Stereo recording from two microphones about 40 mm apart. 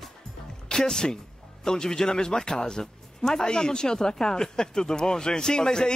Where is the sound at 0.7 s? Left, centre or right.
Centre.